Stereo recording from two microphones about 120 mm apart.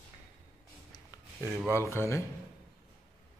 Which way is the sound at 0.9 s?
30° left (ahead or behind).